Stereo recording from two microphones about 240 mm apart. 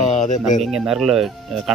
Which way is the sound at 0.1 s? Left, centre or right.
Left.